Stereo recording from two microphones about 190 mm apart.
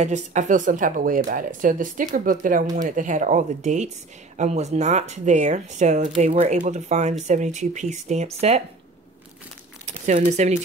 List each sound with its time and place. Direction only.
0.0 s speech: 40° right (ahead or behind)
9.8 s speech: 40° right (ahead or behind)